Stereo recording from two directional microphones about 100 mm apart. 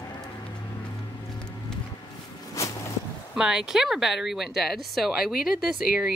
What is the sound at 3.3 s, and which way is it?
Speech, 5° right (ahead or behind).